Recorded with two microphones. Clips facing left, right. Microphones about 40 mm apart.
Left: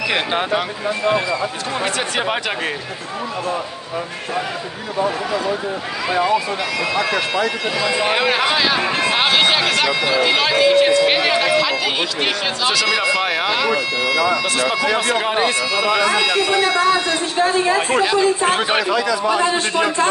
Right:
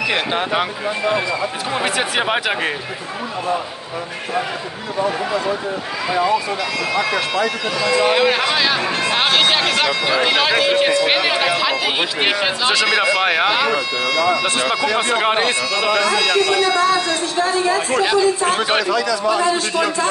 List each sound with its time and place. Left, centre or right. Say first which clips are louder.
0.1 s speech: left 3 dB; centre
0.5 s speech: even; centre
4.9 s speech: even; centre
13.2 s speech: right 3 dB; right
13.5 s speech: right 1 dB; centre
13.7 s speech: left 1 dB; centre
15.7 s speech: even; centre
17.4 s a man's voice: left 2 dB; left
18.9 s a man's voice: even; left